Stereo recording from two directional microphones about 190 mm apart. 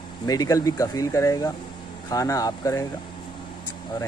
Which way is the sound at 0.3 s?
20° left (ahead or behind).